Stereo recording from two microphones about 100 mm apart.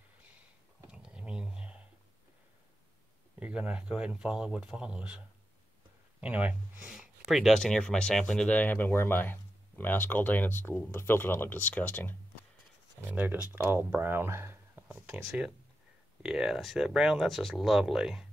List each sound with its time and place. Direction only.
0.8 s a sound: 10° right (ahead or behind)
3.3 s speech: 15° right (ahead or behind)
6.2 s speech: 15° right (ahead or behind)
7.2 s speech: centre (ahead or behind); by 12.2 s 20° left (ahead or behind)
13.1 s speech: 15° right (ahead or behind)
16.2 s speech: 5° right (ahead or behind)